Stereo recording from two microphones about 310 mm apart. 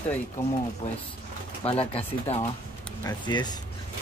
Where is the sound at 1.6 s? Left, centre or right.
Centre.